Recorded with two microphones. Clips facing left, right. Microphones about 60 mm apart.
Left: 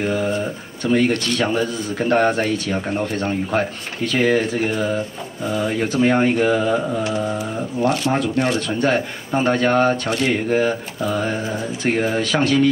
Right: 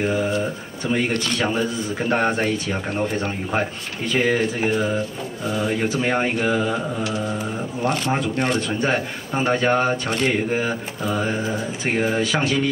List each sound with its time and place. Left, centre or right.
0.0 s a man's voice: centre
0.4 s a sound: centre
1.4 s a man's voice: centre
7.0 s mantra: left
8.1 s a man's voice: centre
8.6 s a man's voice: centre